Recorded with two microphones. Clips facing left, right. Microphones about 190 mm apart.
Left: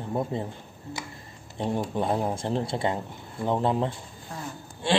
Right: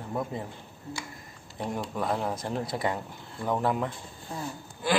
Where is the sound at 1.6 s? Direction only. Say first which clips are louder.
Left 4 dB; 25° left (ahead or behind).